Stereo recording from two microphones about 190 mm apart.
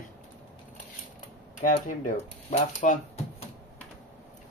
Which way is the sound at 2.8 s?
40° left (ahead or behind).